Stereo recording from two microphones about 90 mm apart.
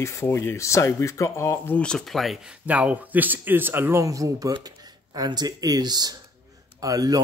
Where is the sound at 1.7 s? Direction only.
10° left (ahead or behind).